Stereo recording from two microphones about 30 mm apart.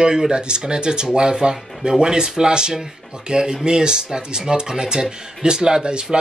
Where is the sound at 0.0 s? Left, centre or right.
Right.